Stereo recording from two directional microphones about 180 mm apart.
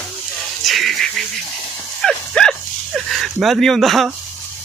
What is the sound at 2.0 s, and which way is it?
Dog, 5° left (ahead or behind).